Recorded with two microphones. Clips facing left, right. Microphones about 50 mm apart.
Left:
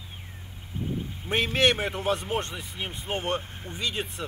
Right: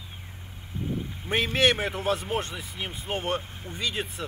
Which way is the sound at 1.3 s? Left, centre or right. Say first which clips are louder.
Even; centre.